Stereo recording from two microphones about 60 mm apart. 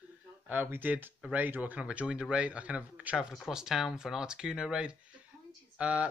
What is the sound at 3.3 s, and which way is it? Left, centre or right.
Speech, centre.